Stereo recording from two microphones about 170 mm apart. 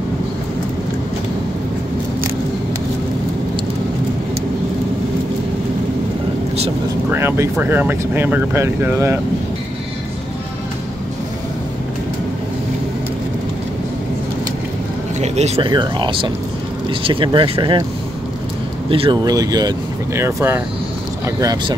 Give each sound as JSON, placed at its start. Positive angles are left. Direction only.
{"t": 7.1, "sound": "speech", "side_deg": -15}
{"t": 15.1, "sound": "speech", "side_deg": -40}
{"t": 15.7, "sound": "speech", "side_deg": -25}
{"t": 18.9, "sound": "speech", "side_deg": -30}